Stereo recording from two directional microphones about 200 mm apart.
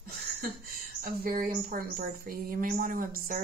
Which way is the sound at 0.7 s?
45° right (ahead or behind).